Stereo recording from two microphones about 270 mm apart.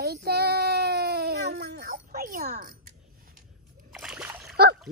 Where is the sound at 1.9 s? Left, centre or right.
Right.